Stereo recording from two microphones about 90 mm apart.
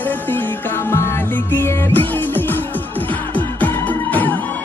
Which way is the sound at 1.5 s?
20° left (ahead or behind).